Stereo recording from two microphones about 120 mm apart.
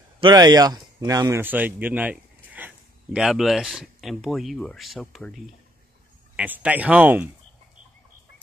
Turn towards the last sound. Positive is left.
turn(degrees=-15)  # may be behind; listen again after turning